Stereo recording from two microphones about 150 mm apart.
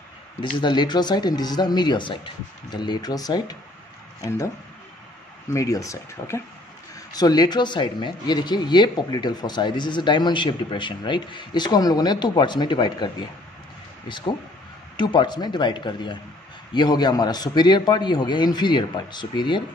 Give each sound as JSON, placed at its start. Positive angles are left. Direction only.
{"t": 0.6, "sound": "speech", "side_deg": 30}
{"t": 5.5, "sound": "speech", "side_deg": 20}